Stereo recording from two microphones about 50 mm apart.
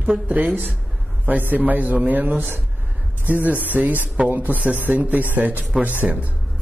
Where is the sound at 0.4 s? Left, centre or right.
Right.